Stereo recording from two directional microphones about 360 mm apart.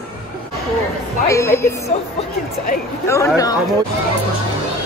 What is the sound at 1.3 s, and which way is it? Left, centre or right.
Speech, centre.